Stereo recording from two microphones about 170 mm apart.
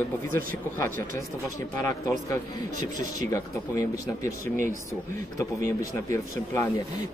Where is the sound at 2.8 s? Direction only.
45° right (ahead or behind).